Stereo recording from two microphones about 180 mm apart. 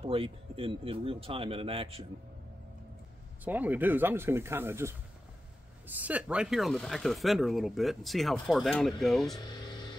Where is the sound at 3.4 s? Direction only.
10° right (ahead or behind).